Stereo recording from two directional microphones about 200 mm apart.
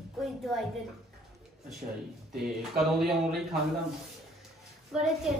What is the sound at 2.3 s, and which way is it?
Speech, centre (ahead or behind).